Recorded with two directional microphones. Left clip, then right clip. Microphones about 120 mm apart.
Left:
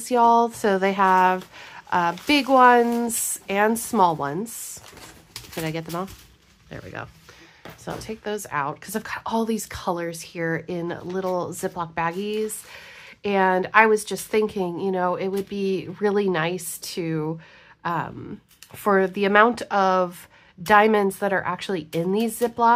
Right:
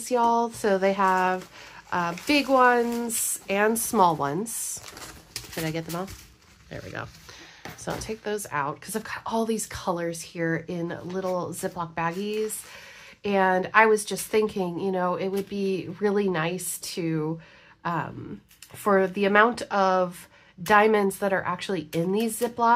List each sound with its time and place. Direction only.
0.0 s a woman's voice: 50° left (ahead or behind)
3.4 s a woman's voice: 40° left (ahead or behind)
5.6 s a woman's voice: 40° left (ahead or behind)